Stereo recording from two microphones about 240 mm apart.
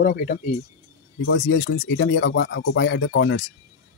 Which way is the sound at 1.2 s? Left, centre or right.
Left.